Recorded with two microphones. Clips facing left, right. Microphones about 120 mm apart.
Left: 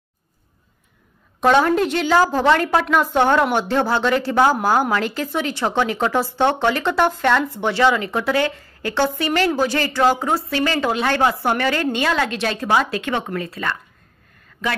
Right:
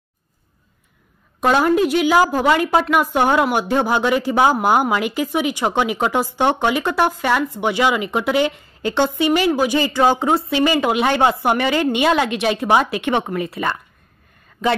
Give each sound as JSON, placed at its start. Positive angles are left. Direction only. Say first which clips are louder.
{"t": 1.4, "sound": "a woman's voice", "louder": "even", "side_deg": -5}